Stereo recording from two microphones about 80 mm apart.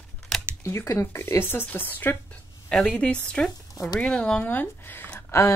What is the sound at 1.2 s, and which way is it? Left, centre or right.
Speech, left.